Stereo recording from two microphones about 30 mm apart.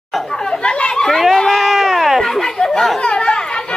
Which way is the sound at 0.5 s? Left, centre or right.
Left.